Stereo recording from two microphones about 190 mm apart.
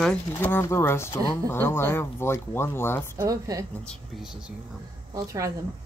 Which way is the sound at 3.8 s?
Centre (ahead or behind).